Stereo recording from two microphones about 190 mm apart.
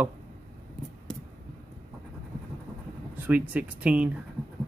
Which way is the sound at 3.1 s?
10° right (ahead or behind).